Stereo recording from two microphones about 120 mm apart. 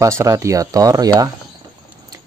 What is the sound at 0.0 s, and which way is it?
Speech, 25° right (ahead or behind).